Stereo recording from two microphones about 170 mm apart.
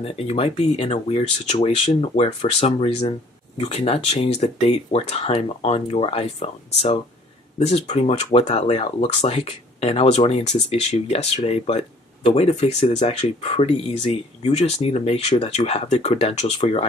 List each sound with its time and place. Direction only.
0.0 s speech: 35° left (ahead or behind)
7.5 s speech: 40° left (ahead or behind)